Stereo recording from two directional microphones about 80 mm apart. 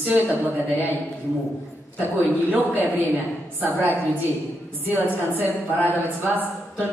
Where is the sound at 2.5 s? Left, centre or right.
Right.